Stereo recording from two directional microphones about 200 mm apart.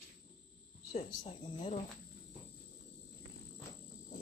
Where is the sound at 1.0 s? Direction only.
30° left (ahead or behind).